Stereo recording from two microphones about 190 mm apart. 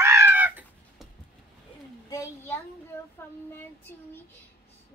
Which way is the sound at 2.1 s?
15° left (ahead or behind).